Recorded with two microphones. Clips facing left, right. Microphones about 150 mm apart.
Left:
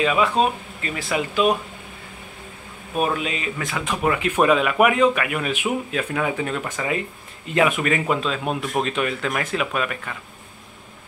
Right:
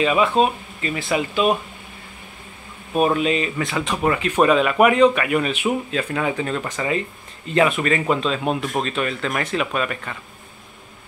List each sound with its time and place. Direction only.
0.0 s speech: centre (ahead or behind)
3.2 s speech: 5° left (ahead or behind)